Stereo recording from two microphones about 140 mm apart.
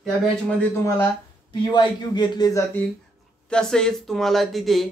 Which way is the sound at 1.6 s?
30° left (ahead or behind).